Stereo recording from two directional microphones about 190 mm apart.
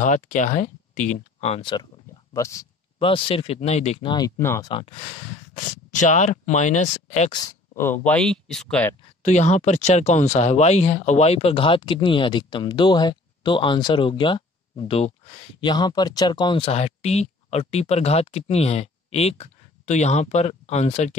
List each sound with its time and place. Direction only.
0.0 s speech: 40° left (ahead or behind); by 2.6 s 15° left (ahead or behind)
3.0 s speech: 30° left (ahead or behind)
7.2 s speech: 20° left (ahead or behind); by 8.9 s 5° left (ahead or behind)
9.2 s speech: 35° left (ahead or behind)